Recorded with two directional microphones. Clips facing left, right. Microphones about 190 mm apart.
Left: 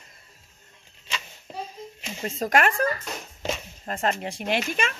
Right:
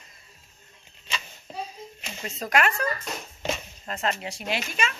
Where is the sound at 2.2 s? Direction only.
45° left (ahead or behind).